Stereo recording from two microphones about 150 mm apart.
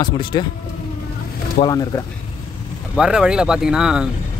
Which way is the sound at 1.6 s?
55° left (ahead or behind).